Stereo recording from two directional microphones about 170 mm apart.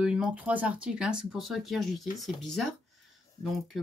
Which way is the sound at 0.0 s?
5° right (ahead or behind).